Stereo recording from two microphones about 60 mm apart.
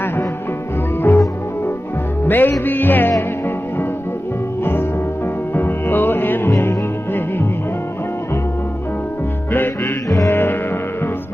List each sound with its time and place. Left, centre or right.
1.1 s music: left
2.2 s music: left
5.5 s music: left
9.5 s music: left